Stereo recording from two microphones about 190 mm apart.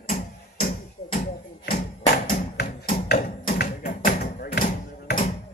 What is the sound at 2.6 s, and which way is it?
Tap, 50° left (ahead or behind).